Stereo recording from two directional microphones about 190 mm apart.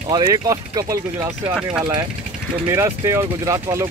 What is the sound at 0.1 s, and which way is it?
Speech, 20° right (ahead or behind).